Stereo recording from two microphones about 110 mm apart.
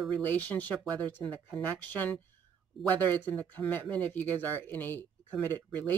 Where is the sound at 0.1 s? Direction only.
15° left (ahead or behind).